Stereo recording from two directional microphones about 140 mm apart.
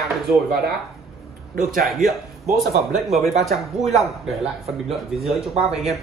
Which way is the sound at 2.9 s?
Centre (ahead or behind).